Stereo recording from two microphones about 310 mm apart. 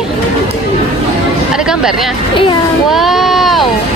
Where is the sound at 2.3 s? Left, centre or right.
Centre.